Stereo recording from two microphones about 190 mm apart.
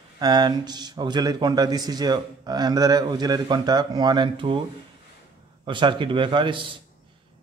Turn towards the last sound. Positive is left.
turn(degrees=-25)  # may be behind; listen again after turning